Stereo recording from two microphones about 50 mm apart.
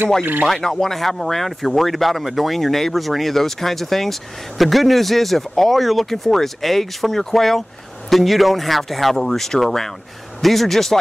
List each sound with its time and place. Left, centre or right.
0.2 s speech: right
0.5 s speech: centre